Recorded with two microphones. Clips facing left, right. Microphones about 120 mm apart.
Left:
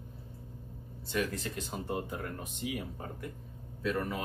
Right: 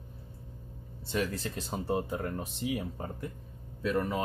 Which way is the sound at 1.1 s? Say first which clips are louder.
Right 1 dB; 30° right (ahead or behind).